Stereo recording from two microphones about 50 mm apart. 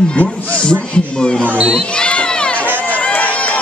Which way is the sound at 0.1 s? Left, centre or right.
Left.